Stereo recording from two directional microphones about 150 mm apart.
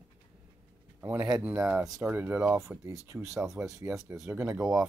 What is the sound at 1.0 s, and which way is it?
Speech, 15° right (ahead or behind).